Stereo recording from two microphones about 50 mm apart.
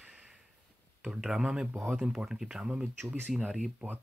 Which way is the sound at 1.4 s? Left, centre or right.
Centre.